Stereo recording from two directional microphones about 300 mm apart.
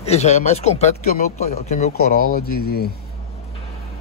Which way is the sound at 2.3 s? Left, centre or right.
Left.